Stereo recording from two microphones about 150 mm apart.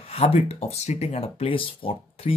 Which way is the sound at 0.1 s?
40° left (ahead or behind).